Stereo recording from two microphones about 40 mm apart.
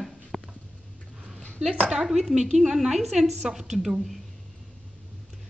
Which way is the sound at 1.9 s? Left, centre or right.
Centre.